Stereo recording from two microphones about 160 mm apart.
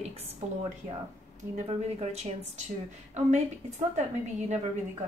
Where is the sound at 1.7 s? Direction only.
40° right (ahead or behind).